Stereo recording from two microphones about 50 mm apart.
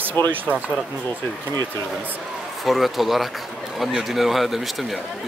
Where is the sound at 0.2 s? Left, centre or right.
Left.